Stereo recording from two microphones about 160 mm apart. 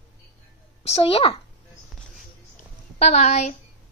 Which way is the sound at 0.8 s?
35° left (ahead or behind).